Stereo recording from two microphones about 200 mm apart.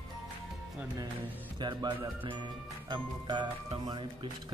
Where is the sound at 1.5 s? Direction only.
25° right (ahead or behind).